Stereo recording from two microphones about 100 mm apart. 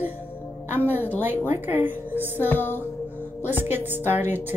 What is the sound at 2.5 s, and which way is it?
Music, 20° left (ahead or behind).